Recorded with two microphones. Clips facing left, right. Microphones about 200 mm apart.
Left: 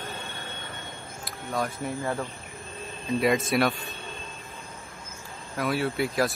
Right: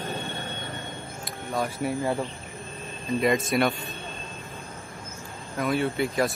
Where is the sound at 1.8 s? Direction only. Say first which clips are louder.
Right 3 dB; 15° right (ahead or behind).